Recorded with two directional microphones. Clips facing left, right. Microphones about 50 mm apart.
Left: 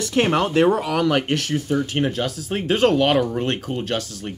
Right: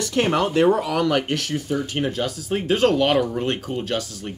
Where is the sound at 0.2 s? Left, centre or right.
Centre.